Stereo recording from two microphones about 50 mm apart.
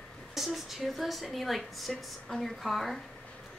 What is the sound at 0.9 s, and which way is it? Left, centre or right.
A woman's voice, centre.